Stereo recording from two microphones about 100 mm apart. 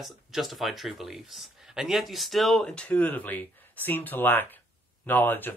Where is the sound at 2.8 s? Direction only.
15° left (ahead or behind).